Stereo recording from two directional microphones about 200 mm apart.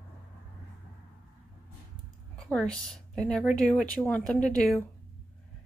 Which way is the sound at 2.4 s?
Centre (ahead or behind).